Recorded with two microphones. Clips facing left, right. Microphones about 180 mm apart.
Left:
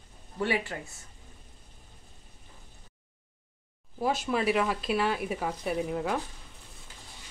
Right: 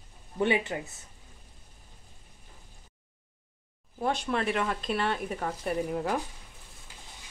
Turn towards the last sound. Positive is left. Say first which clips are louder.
# even
turn(degrees=0)  # may be behind; listen again after turning